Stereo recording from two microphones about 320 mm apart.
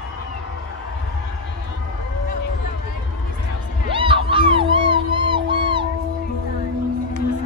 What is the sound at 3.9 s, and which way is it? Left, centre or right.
Music, centre.